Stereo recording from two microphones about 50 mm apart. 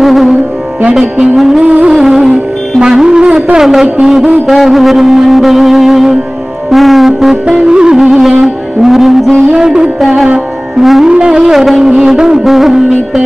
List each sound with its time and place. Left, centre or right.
0.0 s music: centre
0.9 s music: centre
1.3 s music: centre
1.6 s music: centre
2.0 s music: centre
3.5 s music: centre
7.4 s music: centre
9.4 s music: centre
9.9 s music: centre
11.1 s music: centre